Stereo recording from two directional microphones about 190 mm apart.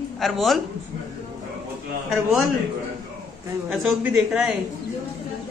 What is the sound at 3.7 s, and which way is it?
Speech, centre (ahead or behind).